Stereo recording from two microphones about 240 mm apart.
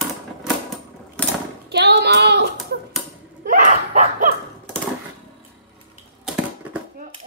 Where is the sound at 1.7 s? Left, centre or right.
Right.